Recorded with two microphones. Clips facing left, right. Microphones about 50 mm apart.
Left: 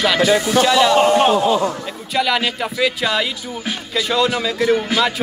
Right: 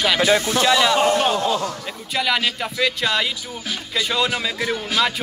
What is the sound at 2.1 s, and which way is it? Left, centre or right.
Speech, centre.